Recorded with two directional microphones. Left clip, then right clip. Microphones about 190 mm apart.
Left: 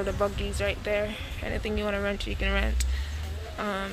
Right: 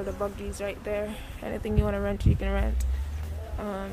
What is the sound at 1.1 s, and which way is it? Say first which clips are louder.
Speech: left 1 dB; 15° right (ahead or behind).